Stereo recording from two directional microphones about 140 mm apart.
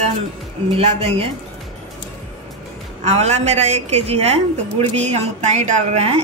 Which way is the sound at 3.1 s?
50° right (ahead or behind).